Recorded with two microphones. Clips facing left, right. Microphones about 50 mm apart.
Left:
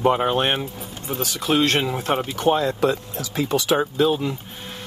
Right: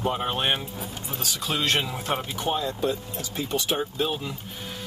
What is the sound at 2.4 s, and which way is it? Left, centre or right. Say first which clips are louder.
Speech: left 9 dB; left.